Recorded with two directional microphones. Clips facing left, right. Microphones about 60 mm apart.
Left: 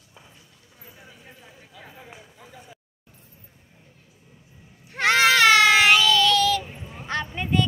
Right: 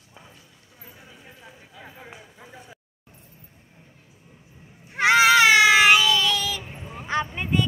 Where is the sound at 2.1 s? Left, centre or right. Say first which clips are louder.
Right 1 dB; centre.